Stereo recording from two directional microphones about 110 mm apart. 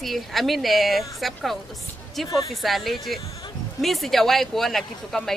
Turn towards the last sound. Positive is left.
turn(degrees=5)  # may be behind; listen again after turning